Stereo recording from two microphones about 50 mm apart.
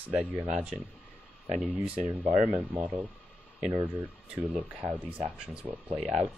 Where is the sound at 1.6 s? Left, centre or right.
Right.